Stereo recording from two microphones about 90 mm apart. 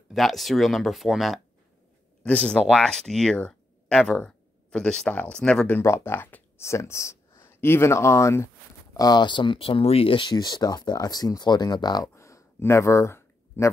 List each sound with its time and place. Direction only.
0.1 s speech: centre (ahead or behind)
2.2 s speech: 15° left (ahead or behind)
5.7 s speech: 30° left (ahead or behind)
8.9 s speech: 50° left (ahead or behind)
12.1 s a sound: 35° left (ahead or behind)